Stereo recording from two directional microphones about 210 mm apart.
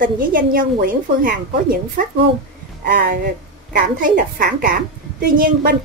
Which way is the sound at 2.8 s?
45° right (ahead or behind).